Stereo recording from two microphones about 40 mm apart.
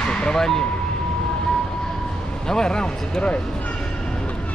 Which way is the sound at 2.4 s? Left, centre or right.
Centre.